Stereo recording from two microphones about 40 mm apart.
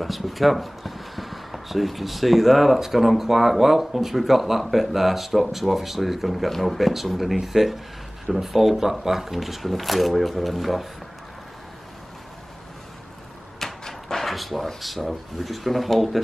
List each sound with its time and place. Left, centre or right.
0.0 s speech: centre
13.6 s door: centre
14.8 s speech: centre